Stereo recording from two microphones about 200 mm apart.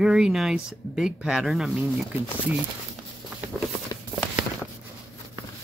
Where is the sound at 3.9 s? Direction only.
15° left (ahead or behind).